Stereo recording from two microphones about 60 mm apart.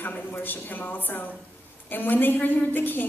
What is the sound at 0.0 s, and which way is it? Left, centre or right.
A woman's voice, left.